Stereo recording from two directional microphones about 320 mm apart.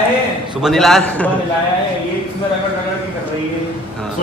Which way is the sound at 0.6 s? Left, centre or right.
Centre.